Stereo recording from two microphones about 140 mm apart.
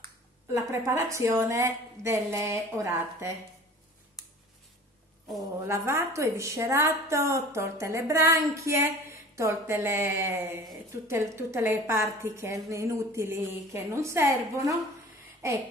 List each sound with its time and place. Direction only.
0.5 s a woman's voice: 20° right (ahead or behind)
5.7 s a woman's voice: 20° right (ahead or behind)